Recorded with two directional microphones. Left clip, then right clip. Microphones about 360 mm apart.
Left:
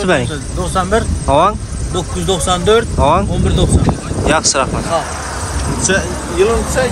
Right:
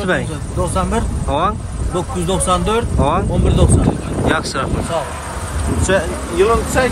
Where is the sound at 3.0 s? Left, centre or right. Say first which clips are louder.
Left 5 dB; centre.